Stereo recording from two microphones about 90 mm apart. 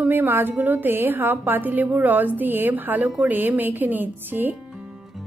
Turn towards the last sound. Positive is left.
turn(degrees=0)  # may be behind; listen again after turning